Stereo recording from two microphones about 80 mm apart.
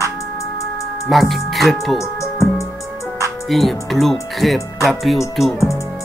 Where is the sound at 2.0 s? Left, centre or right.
Left.